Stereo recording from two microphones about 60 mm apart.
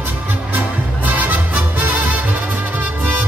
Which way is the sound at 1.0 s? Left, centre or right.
Right.